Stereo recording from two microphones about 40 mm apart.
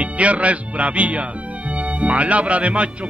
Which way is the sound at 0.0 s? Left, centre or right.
Right.